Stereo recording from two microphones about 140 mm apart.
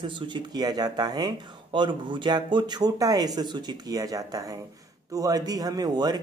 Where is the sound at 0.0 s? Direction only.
35° right (ahead or behind).